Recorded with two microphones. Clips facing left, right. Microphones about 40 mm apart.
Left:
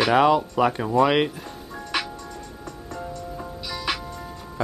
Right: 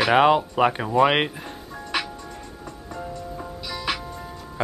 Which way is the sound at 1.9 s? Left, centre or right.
Centre.